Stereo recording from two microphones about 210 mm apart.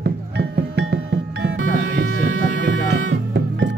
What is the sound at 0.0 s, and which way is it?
Music, 50° right (ahead or behind).